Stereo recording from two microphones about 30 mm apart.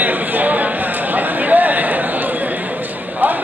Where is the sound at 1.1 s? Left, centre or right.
Right.